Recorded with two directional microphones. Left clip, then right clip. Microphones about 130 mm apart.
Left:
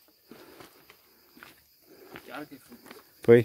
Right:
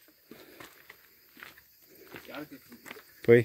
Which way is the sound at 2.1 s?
90° left.